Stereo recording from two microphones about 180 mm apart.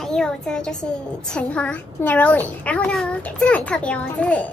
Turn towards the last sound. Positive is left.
turn(degrees=5)  # may be behind; listen again after turning